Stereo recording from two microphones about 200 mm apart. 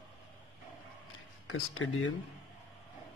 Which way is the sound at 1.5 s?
90° left.